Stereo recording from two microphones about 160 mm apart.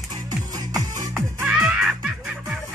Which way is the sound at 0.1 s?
25° right (ahead or behind).